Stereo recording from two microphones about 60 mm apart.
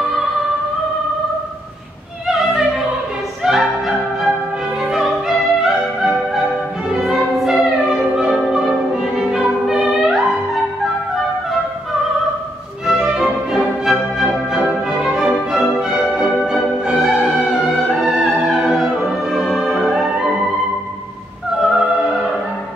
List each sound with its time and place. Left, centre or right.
3.4 s music: centre
12.8 s music: centre
15.0 s music: centre
21.5 s opera: centre